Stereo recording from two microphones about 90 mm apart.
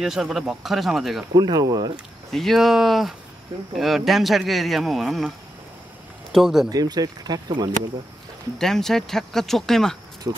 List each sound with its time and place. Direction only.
0.0 s speech: 5° right (ahead or behind)
1.3 s speech: 50° right (ahead or behind)
2.3 s speech: centre (ahead or behind)
6.3 s speech: 5° right (ahead or behind)
6.7 s speech: 45° right (ahead or behind)
8.5 s speech: 5° left (ahead or behind)
10.3 s speech: 55° right (ahead or behind)